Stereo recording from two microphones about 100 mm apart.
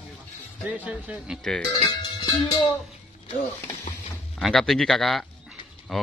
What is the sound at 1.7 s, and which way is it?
Speech, 45° left (ahead or behind).